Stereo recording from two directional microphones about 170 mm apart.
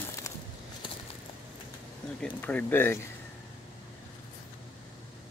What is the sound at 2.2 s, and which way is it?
Speech, 10° left (ahead or behind).